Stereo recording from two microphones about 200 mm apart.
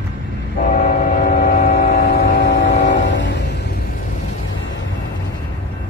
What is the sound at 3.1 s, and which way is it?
Music, 60° left (ahead or behind).